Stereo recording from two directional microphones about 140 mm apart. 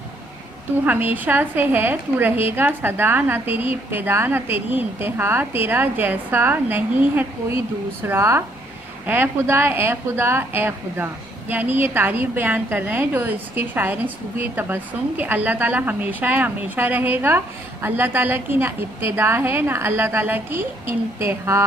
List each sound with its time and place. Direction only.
0.8 s a woman's voice: 15° right (ahead or behind)